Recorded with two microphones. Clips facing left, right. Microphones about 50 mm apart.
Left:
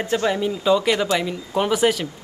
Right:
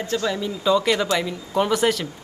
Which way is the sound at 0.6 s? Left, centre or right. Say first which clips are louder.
Even; centre.